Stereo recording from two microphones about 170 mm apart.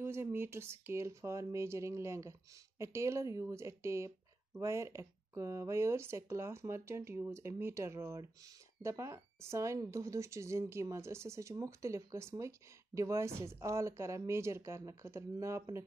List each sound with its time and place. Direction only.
0.0 s speech: 15° right (ahead or behind)